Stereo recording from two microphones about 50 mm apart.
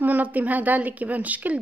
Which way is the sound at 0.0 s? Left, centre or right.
Right.